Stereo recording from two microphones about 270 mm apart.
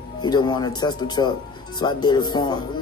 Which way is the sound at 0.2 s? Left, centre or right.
Centre.